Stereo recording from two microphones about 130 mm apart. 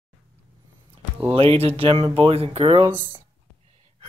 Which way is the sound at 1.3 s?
50° right (ahead or behind).